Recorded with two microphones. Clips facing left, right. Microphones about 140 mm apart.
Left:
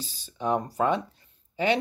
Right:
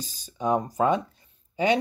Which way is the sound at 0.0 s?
40° right (ahead or behind).